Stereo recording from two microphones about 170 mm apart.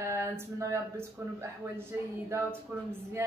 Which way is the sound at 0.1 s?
20° right (ahead or behind).